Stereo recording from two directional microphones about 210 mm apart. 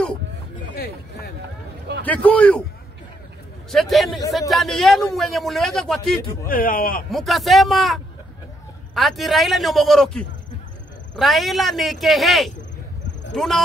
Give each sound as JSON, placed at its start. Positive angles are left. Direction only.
{"t": 0.7, "sound": "a sound", "side_deg": 50}
{"t": 2.0, "sound": "a man's voice", "side_deg": 5}
{"t": 3.7, "sound": "a man's voice", "side_deg": 0}
{"t": 6.4, "sound": "speech", "side_deg": 40}
{"t": 7.1, "sound": "a man's voice", "side_deg": 0}